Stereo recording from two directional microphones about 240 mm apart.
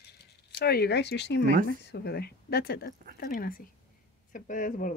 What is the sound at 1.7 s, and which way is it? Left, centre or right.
A woman's voice, left.